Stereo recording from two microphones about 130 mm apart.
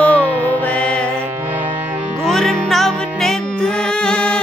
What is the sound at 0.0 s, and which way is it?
Music, 10° left (ahead or behind).